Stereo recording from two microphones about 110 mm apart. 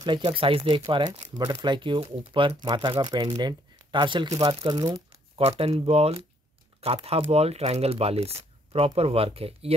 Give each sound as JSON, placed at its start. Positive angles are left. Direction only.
{"t": 0.0, "sound": "speech", "side_deg": -45}
{"t": 1.4, "sound": "speech", "side_deg": -25}
{"t": 1.7, "sound": "speech", "side_deg": -50}
{"t": 5.4, "sound": "speech", "side_deg": -65}